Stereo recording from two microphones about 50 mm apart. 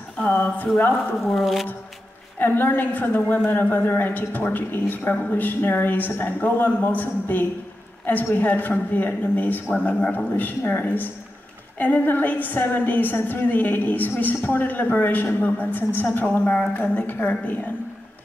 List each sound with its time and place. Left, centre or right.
0.3 s a woman's voice: left
1.1 s speech: centre
2.3 s a woman's voice: left